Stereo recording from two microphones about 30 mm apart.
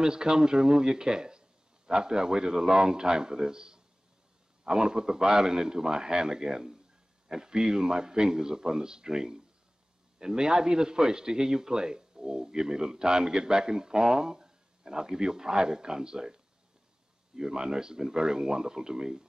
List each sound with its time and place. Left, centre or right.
0.0 s a man's voice: right
17.4 s a man's voice: right